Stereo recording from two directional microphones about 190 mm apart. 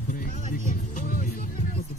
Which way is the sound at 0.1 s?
45° left (ahead or behind).